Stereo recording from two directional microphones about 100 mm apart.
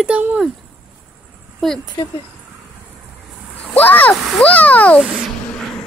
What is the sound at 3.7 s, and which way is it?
Speech, 15° left (ahead or behind).